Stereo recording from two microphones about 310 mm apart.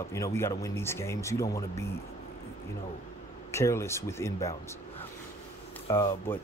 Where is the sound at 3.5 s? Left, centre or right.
Centre.